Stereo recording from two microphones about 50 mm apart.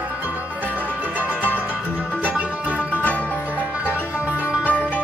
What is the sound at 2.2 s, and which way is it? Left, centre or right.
Music, right.